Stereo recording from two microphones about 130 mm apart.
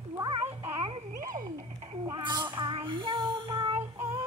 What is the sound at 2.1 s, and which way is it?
Child singing, 35° right (ahead or behind).